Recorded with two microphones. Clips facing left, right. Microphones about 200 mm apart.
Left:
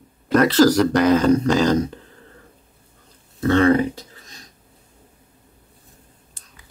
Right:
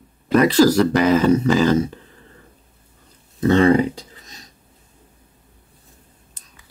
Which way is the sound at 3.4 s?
15° right (ahead or behind).